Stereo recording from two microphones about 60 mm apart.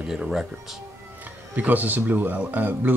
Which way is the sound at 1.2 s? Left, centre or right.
Right.